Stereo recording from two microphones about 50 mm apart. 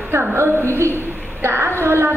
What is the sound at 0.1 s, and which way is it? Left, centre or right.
Speech, right.